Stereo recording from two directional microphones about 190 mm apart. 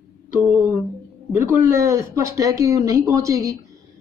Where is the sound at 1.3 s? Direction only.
15° right (ahead or behind).